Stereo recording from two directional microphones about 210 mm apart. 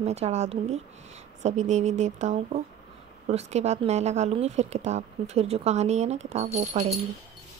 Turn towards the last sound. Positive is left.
turn(degrees=-30)  # may be behind; listen again after turning